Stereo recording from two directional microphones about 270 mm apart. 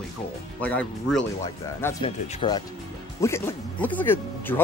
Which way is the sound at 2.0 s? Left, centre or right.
Centre.